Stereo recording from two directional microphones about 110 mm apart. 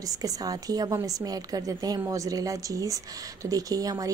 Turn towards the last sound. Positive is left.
turn(degrees=-35)  # may be behind; listen again after turning